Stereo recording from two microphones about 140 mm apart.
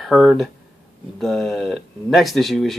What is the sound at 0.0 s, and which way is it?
Speech, centre (ahead or behind).